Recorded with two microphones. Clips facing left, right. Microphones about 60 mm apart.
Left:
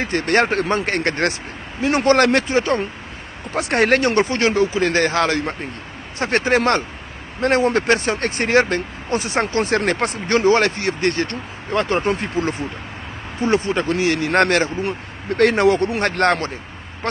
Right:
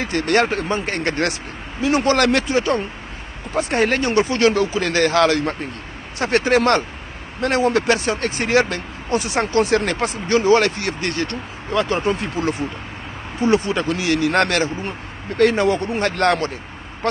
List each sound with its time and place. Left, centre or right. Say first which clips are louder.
0.0 s speech: even; left
0.6 s speech: left 3 dB; left
1.8 s speech: left 2 dB; left
3.5 s speech: left 2 dB; left
4.3 s speech: right 1 dB; left
10.4 s speech: even; left
13.4 s speech: right 1 dB; left
14.8 s speech: left 4 dB; left
16.0 s speech: even; left